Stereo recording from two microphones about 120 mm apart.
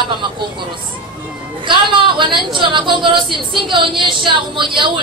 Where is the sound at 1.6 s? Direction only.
45° right (ahead or behind).